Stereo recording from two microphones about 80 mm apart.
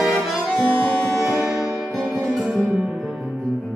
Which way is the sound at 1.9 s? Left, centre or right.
Centre.